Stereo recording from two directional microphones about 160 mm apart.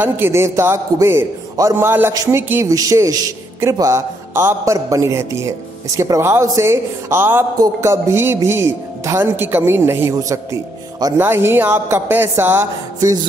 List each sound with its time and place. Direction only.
0.0 s a man's voice: 15° right (ahead or behind)